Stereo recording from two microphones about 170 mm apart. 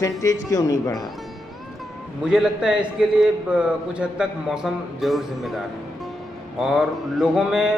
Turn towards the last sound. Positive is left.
turn(degrees=-5)  # may be behind; listen again after turning